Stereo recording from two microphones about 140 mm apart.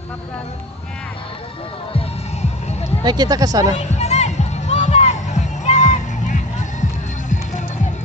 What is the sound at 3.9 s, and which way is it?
Music, 50° left (ahead or behind).